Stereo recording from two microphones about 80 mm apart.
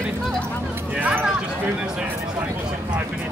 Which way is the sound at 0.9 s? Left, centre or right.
Centre.